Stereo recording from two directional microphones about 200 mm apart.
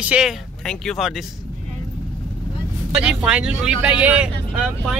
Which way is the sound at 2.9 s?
5° right (ahead or behind).